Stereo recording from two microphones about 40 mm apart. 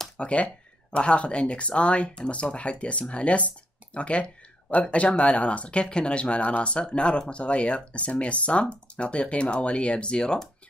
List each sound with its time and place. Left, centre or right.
0.2 s speech: left